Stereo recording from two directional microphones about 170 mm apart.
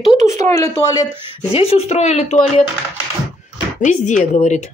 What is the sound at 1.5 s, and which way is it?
Speech, 35° left (ahead or behind).